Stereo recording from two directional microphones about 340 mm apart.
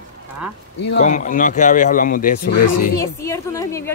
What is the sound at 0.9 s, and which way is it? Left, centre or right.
Speech, left.